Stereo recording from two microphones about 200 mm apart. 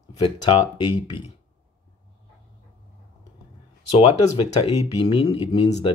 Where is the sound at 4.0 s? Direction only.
25° left (ahead or behind).